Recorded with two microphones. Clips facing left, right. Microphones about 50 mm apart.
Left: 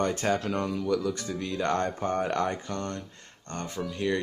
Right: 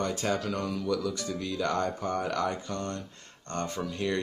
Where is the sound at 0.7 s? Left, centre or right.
Centre.